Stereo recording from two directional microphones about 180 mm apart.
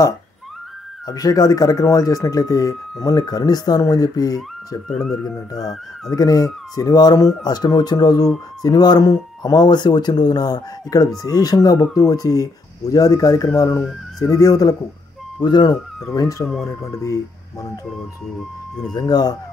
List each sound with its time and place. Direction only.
1.0 s speech: 20° left (ahead or behind)
4.8 s speech: centre (ahead or behind)
6.0 s speech: 20° left (ahead or behind)
16.4 s speech: centre (ahead or behind)
16.8 s speech: 15° left (ahead or behind)
18.9 s speech: 20° left (ahead or behind)